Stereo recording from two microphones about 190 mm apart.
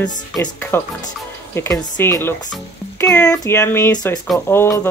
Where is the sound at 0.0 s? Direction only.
5° left (ahead or behind).